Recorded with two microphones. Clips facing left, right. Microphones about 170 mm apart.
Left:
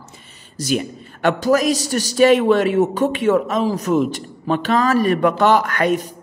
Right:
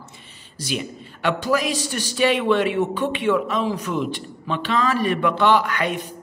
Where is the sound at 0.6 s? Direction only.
45° left (ahead or behind).